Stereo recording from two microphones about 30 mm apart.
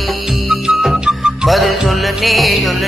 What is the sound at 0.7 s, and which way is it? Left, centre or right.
Music, centre.